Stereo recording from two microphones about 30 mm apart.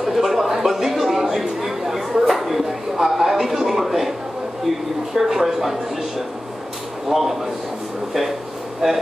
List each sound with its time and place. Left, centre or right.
0.0 s a sound: centre
5.1 s speech: centre
7.1 s speech: centre
8.8 s speech: centre